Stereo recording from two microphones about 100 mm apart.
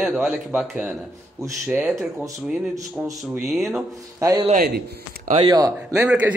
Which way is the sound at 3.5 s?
Centre (ahead or behind).